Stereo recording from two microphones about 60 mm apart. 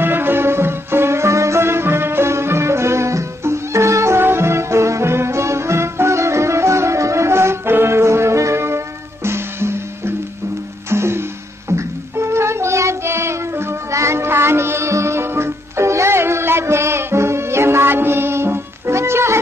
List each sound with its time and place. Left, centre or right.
0.0 s music: right
11.7 s child singing: right